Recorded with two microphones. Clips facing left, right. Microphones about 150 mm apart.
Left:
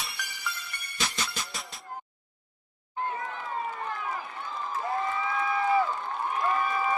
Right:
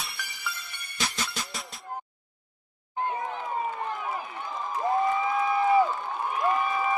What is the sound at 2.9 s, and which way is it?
Run, 20° right (ahead or behind).